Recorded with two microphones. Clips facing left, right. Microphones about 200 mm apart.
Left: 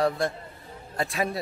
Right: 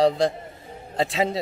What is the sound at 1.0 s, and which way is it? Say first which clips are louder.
Speech: right 5 dB; 20° right (ahead or behind).